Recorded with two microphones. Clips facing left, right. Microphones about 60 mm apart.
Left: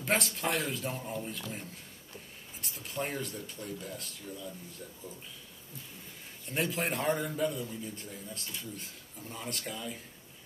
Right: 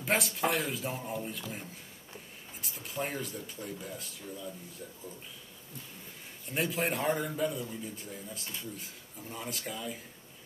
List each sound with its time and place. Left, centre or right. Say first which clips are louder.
0.0 s speech: right 1 dB; centre
6.4 s speech: right 1 dB; centre